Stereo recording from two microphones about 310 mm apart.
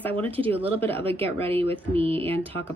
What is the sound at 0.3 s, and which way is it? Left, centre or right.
Speech, centre.